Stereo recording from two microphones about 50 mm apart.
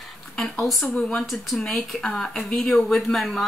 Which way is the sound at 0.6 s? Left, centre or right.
Centre.